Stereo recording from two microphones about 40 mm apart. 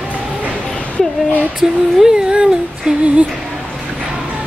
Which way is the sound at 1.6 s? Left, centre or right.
Centre.